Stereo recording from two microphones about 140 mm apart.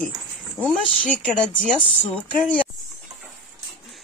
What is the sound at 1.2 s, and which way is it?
Speech, 5° left (ahead or behind).